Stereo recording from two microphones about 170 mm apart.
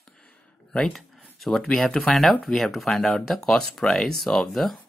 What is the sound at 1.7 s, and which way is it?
Speech, centre (ahead or behind).